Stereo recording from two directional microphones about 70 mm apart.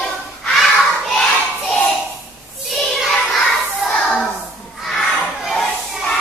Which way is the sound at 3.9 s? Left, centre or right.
Centre.